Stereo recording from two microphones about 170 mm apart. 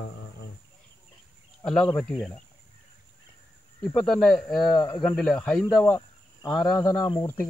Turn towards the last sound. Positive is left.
turn(degrees=15)  # may be behind; listen again after turning